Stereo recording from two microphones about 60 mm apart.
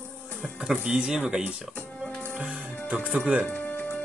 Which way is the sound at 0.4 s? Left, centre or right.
Centre.